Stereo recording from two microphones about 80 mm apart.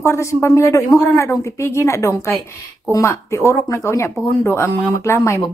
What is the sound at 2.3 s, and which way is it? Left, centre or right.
Speech, left.